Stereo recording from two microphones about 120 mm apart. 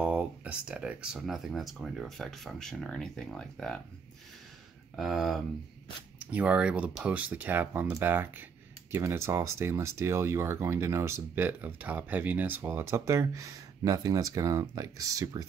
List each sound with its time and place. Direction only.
0.0 s speech: 10° right (ahead or behind); by 3.8 s 5° left (ahead or behind)
4.9 s speech: centre (ahead or behind); by 15.4 s 30° right (ahead or behind)